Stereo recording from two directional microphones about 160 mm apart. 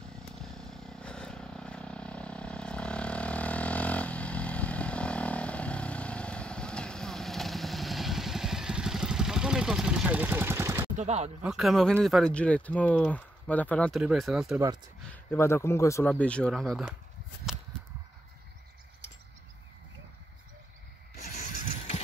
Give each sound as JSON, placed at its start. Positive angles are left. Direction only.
{"t": 0.0, "sound": "vehicle", "side_deg": 5}
{"t": 11.0, "sound": "speech", "side_deg": -45}
{"t": 11.4, "sound": "speech", "side_deg": -5}
{"t": 15.3, "sound": "speech", "side_deg": 15}
{"t": 21.3, "sound": "vehicle", "side_deg": 50}